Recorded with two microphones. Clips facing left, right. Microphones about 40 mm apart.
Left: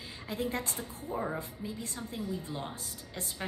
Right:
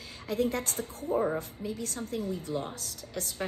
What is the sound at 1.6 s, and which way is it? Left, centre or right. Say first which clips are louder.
Speech: right 4 dB; right.